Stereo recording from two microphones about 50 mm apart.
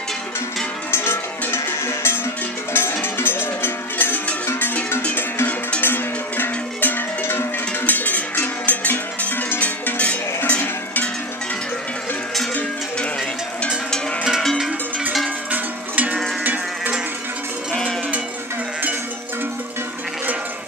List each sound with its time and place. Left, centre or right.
0.9 s cowbell: left
2.7 s music: left
5.8 s cowbell: left
15.5 s cowbell: right